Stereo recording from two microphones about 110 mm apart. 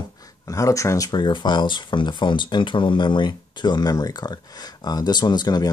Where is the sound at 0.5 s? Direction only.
30° left (ahead or behind).